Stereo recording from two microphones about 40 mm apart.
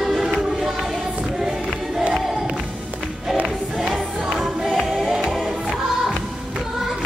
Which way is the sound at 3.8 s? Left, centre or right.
Centre.